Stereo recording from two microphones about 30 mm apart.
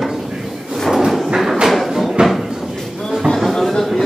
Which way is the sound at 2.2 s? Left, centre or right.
Right.